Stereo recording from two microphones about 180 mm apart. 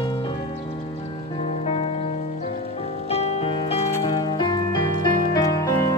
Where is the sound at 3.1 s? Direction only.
35° left (ahead or behind); by 5.9 s 20° left (ahead or behind).